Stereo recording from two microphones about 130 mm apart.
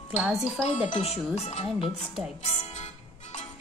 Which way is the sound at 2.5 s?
60° left (ahead or behind).